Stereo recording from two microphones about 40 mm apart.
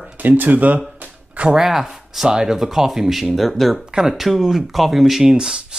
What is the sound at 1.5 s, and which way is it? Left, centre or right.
Speech, centre.